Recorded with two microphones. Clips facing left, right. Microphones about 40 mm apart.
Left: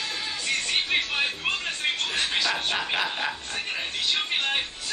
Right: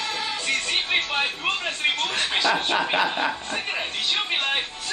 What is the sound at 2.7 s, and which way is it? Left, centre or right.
Speech, centre.